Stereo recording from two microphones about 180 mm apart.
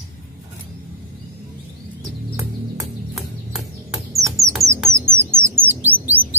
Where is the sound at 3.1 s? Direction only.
Centre (ahead or behind).